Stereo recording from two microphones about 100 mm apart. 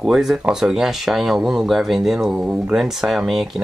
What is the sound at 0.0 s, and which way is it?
Speech, 5° right (ahead or behind).